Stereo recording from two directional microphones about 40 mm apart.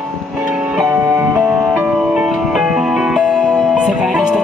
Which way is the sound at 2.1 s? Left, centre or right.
Centre.